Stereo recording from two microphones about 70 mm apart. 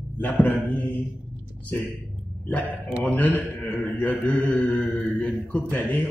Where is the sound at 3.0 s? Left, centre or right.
Centre.